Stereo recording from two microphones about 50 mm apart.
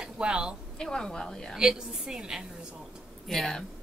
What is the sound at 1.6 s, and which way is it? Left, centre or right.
Speech, centre.